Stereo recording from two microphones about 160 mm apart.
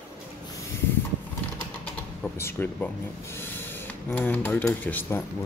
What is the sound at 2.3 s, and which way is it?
Speech, 15° left (ahead or behind).